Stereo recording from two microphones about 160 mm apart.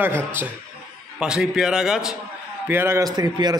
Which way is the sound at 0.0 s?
10° right (ahead or behind).